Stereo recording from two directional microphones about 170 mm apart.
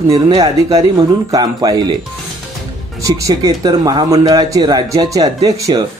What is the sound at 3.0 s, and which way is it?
Speech, 20° right (ahead or behind).